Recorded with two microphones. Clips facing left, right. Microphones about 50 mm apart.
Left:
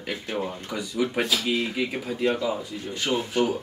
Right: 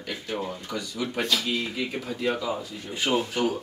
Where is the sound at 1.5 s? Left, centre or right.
Left.